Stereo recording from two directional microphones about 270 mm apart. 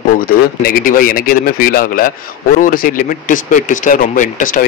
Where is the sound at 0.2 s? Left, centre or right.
Left.